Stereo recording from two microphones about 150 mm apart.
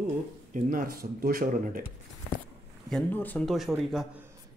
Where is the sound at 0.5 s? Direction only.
65° right (ahead or behind).